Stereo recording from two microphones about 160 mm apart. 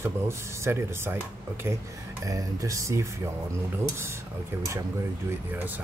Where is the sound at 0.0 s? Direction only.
15° right (ahead or behind).